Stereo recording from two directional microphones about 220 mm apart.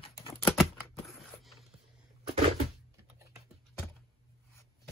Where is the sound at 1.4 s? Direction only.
Centre (ahead or behind).